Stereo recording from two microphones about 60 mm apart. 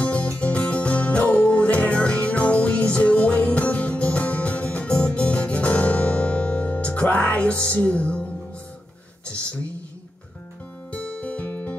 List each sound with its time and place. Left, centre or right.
0.0 s music: left
10.9 s music: centre